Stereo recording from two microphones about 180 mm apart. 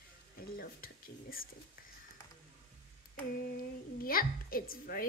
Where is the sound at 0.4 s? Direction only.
55° left (ahead or behind).